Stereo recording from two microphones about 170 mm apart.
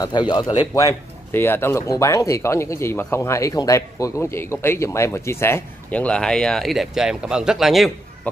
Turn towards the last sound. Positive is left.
turn(degrees=0)  # may be behind; listen again after turning